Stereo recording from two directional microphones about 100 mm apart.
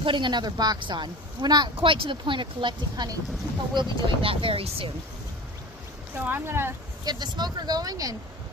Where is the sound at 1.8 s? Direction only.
55° right (ahead or behind).